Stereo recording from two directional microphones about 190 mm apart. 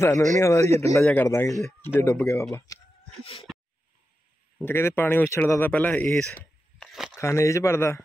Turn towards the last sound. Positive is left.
turn(degrees=15)  # may be behind; listen again after turning